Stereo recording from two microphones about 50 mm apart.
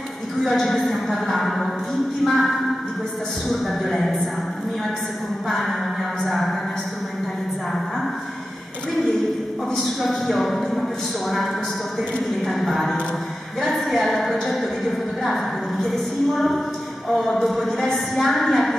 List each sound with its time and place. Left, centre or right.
0.4 s a woman's voice: centre
5.5 s a woman's voice: centre
10.0 s a woman's voice: centre